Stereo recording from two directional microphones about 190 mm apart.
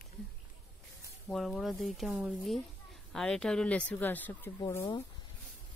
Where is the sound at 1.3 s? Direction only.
Centre (ahead or behind).